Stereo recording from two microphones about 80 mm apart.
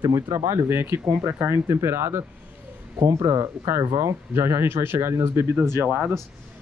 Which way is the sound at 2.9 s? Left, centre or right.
Right.